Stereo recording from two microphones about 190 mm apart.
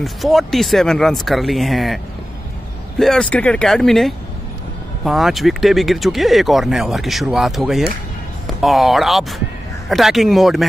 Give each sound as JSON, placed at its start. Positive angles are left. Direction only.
{"t": 0.0, "sound": "speech", "side_deg": 0}
{"t": 3.0, "sound": "speech", "side_deg": 5}